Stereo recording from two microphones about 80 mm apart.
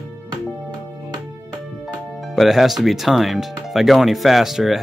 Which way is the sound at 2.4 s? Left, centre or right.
Centre.